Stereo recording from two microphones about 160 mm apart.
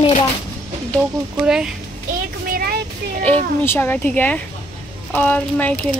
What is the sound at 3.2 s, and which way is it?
Speech, 15° left (ahead or behind).